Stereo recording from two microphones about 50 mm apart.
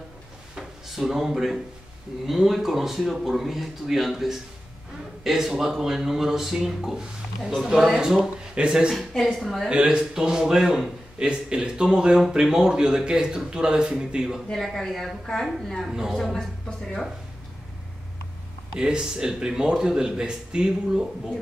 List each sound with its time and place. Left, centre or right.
0.6 s speech: centre
8.9 s speech: centre
9.7 s speech: centre
14.5 s speech: centre
18.8 s speech: centre